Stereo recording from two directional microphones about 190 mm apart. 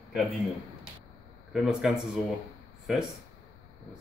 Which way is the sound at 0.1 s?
Centre (ahead or behind).